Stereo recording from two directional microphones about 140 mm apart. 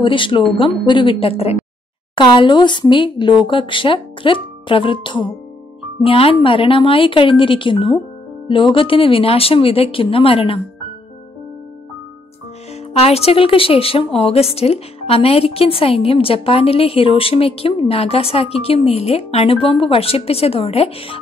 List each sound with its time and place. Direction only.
0.0 s speech: 35° left (ahead or behind)
2.1 s speech: 35° left (ahead or behind)
12.9 s a woman's voice: 45° left (ahead or behind)